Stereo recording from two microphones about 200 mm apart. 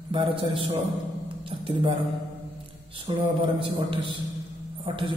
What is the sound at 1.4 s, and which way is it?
Speech, 25° right (ahead or behind).